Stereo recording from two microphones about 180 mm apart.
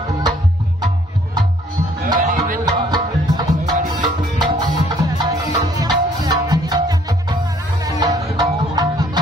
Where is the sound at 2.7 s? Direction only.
20° right (ahead or behind).